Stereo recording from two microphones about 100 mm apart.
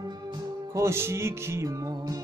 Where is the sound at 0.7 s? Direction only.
25° right (ahead or behind).